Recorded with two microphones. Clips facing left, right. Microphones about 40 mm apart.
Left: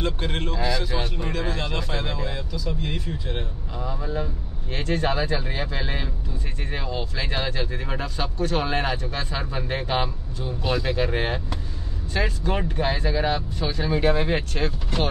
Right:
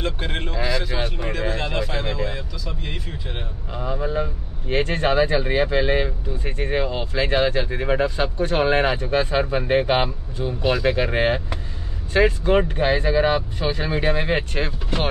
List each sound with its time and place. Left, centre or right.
0.0 s speech: centre
3.7 s speech: right